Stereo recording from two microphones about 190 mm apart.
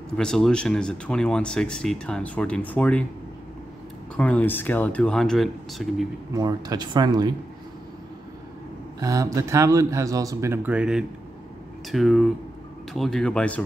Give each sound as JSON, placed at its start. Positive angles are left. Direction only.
{"t": 0.2, "sound": "speech", "side_deg": 5}
{"t": 4.2, "sound": "speech", "side_deg": 10}
{"t": 6.3, "sound": "speech", "side_deg": -20}
{"t": 9.0, "sound": "speech", "side_deg": -15}